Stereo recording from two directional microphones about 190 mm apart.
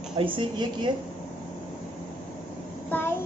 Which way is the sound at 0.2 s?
25° right (ahead or behind).